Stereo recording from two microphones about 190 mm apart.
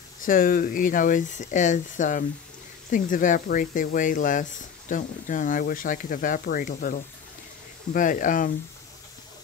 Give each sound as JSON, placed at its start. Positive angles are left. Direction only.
{"t": 0.2, "sound": "speech", "side_deg": 45}